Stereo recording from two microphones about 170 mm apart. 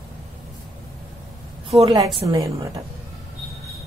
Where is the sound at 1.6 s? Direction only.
35° right (ahead or behind).